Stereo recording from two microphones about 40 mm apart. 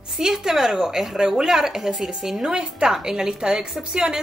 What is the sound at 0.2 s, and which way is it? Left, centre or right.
A woman's voice, centre.